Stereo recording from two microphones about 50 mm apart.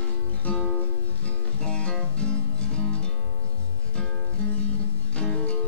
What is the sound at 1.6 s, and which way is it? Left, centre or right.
Music, centre.